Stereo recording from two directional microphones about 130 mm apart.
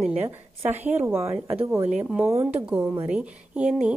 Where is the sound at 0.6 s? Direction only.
55° right (ahead or behind).